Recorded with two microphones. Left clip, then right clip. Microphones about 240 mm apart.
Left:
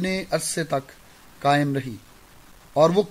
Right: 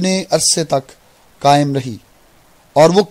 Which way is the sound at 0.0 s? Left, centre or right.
Right.